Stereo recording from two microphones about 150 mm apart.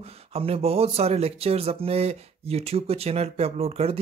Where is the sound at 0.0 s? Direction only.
40° right (ahead or behind).